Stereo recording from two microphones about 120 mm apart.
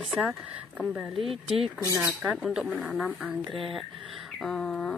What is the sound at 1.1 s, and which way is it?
Speech, 50° right (ahead or behind).